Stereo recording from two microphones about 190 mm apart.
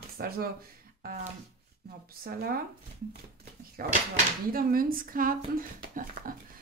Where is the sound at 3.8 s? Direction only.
55° right (ahead or behind).